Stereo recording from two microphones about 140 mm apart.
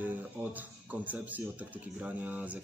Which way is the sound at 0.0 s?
10° right (ahead or behind).